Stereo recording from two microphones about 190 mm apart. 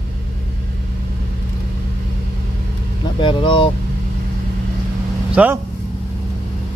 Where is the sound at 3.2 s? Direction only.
25° left (ahead or behind).